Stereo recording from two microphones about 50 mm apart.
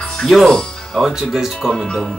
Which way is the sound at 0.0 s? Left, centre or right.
Centre.